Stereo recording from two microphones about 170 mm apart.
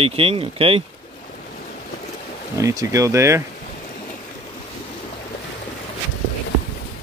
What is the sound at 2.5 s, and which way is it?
Speech, 20° right (ahead or behind).